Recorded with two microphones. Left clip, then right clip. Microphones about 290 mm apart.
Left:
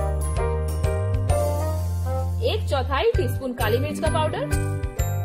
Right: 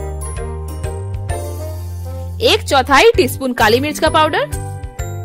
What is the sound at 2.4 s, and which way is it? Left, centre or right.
Speech, right.